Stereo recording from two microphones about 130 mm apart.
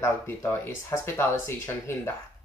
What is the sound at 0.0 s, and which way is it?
Speech, 20° left (ahead or behind).